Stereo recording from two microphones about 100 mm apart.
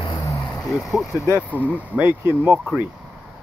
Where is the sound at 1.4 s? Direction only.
15° right (ahead or behind).